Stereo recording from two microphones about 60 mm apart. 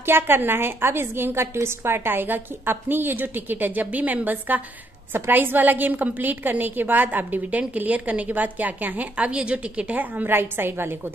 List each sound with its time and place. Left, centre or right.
0.0 s a woman's voice: right